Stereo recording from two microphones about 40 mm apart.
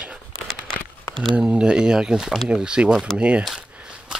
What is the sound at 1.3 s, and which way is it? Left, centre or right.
Speech, right.